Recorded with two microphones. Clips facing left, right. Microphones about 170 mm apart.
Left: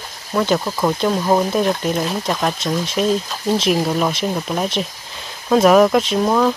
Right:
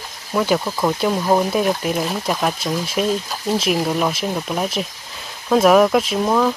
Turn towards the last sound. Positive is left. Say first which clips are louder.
# left 2 dB
turn(degrees=0)  # may be behind; listen again after turning